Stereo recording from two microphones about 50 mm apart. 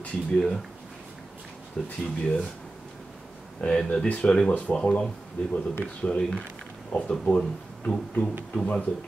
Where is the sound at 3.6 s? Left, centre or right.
Centre.